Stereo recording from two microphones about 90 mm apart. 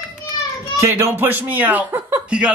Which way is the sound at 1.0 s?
20° right (ahead or behind).